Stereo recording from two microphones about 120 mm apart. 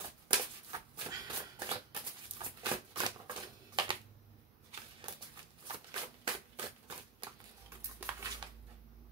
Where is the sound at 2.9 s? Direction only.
35° right (ahead or behind).